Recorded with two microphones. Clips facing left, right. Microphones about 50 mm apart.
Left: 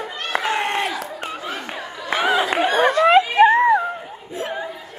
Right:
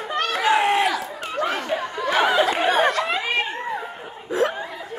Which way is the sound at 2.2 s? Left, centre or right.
Centre.